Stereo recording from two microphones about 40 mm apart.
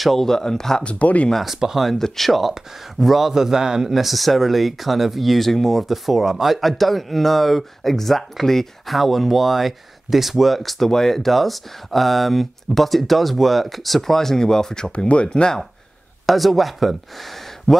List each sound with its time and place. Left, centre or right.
0.0 s speech: centre
0.8 s speech: left
1.4 s speech: centre
1.9 s speech: centre
3.9 s speech: centre
14.9 s speech: left
16.3 s speech: centre